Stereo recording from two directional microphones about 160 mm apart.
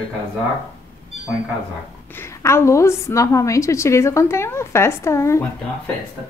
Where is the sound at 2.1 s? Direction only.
15° left (ahead or behind).